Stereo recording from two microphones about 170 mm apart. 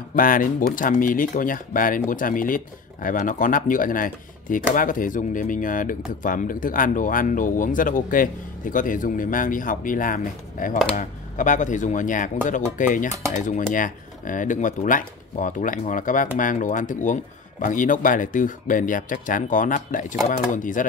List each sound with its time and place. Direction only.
0.1 s speech: 55° left (ahead or behind)